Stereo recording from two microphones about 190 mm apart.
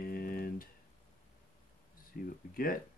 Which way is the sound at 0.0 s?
50° left (ahead or behind).